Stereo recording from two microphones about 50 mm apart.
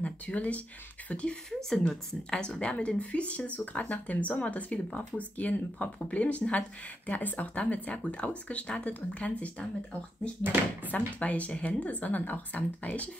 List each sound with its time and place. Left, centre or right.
0.0 s speech: left
1.8 s speech: centre
10.4 s speech: right
10.9 s speech: left